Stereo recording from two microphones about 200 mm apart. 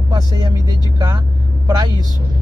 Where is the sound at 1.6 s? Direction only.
20° right (ahead or behind).